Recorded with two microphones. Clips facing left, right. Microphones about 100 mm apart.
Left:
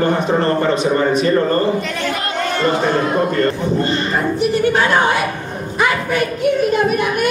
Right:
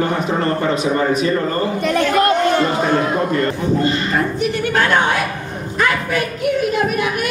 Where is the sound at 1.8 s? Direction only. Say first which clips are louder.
Right 7 dB; 50° right (ahead or behind).